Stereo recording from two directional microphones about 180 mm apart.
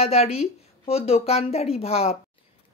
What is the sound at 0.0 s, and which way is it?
A woman's voice, 35° left (ahead or behind).